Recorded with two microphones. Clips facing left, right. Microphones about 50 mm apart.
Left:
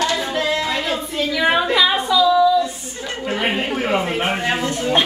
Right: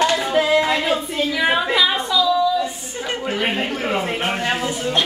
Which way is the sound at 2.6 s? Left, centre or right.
Centre.